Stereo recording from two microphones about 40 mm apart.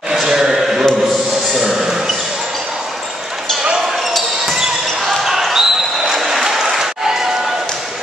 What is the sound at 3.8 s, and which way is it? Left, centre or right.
Basketball bounce, centre.